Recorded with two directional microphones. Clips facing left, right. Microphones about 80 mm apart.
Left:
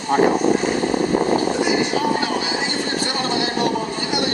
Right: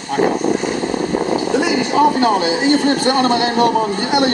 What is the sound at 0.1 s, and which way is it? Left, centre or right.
Speech, left.